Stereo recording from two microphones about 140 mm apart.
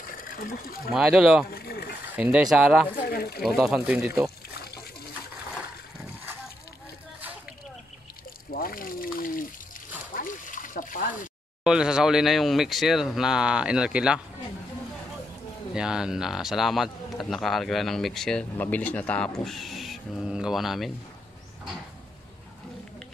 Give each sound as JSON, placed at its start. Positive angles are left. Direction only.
{"t": 0.2, "sound": "speech", "side_deg": 90}
{"t": 0.9, "sound": "speech", "side_deg": -5}
{"t": 1.5, "sound": "speech", "side_deg": 90}
{"t": 2.1, "sound": "speech", "side_deg": -10}
{"t": 3.0, "sound": "speech", "side_deg": 90}
{"t": 3.4, "sound": "speech", "side_deg": 0}
{"t": 8.5, "sound": "water", "side_deg": 90}
{"t": 10.1, "sound": "splash", "side_deg": 70}
{"t": 11.6, "sound": "speech", "side_deg": -5}
{"t": 15.7, "sound": "speech", "side_deg": -5}